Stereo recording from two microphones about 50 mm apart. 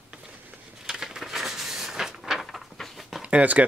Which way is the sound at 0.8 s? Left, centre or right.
Centre.